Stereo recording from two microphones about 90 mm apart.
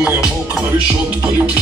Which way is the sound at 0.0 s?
10° right (ahead or behind).